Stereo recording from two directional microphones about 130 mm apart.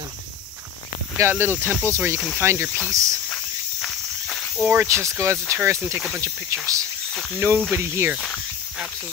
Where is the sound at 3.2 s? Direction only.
Centre (ahead or behind).